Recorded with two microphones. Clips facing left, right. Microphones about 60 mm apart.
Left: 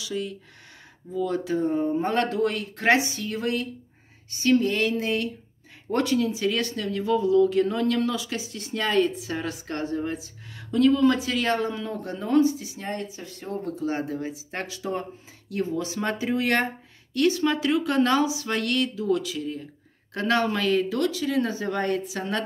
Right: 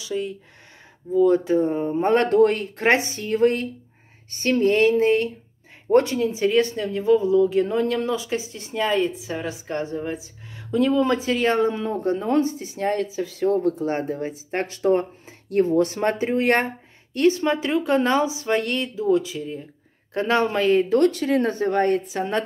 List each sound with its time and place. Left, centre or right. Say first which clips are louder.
0.0 s speech: right 3 dB; right
2.2 s speech: right 8 dB; right
2.5 s speech: right 2 dB; right
21.0 s speech: right 5 dB; right